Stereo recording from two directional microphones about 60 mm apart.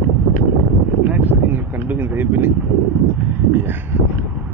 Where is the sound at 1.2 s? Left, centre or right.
Right.